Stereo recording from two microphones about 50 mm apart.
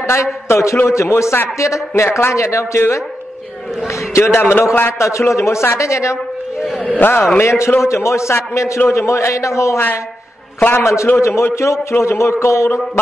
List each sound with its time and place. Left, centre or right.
0.0 s a man's voice: left
0.8 s a man's voice: left
1.6 s speech: left
2.0 s a man's voice: left
2.3 s speech: left
4.2 s a man's voice: left
4.9 s speech: left
5.3 s speech: left
7.0 s a man's voice: left
7.3 s a man's voice: left
10.7 s a man's voice: left